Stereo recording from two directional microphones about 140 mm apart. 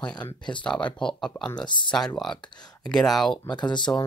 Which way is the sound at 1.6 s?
35° left (ahead or behind).